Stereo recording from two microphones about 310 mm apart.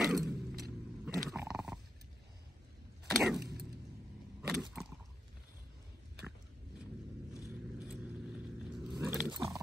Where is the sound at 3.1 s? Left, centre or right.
Centre.